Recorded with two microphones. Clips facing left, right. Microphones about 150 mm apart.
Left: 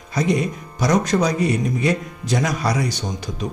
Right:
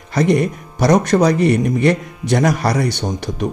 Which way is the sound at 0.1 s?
65° right (ahead or behind).